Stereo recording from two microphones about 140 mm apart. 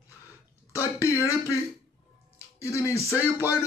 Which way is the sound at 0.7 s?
20° left (ahead or behind).